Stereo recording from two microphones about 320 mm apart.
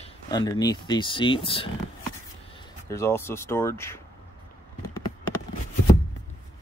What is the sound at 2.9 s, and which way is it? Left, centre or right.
Speech, centre.